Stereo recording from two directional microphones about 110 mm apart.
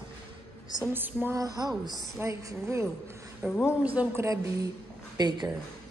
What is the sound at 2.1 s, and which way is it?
A woman's voice, 25° right (ahead or behind).